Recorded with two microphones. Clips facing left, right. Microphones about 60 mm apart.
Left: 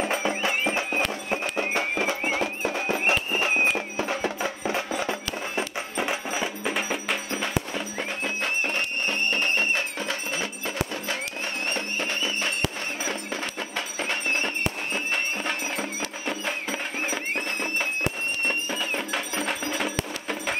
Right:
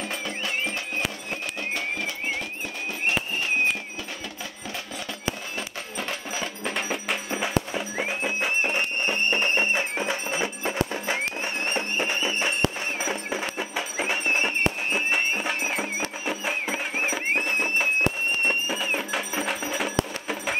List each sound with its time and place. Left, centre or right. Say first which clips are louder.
0.0 s music: left 6 dB; left
2.4 s music: left 6 dB; left
3.1 s a sound: even; left
4.0 s music: left 9 dB; left
5.6 s music: left 5 dB; centre
7.2 s music: right 2 dB; centre